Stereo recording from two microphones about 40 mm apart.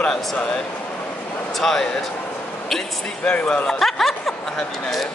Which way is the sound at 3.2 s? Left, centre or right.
Left.